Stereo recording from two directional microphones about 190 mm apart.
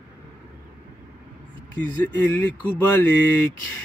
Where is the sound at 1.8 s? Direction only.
10° left (ahead or behind).